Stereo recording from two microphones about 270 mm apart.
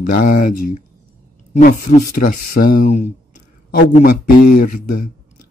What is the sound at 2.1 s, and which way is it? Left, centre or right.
Speech, left.